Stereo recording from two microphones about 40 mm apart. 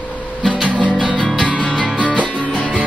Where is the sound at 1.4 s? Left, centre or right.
Left.